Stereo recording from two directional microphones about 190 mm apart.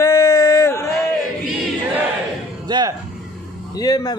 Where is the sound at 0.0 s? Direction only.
15° left (ahead or behind).